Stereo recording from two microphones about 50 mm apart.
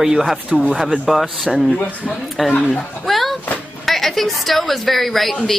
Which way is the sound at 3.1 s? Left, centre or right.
Centre.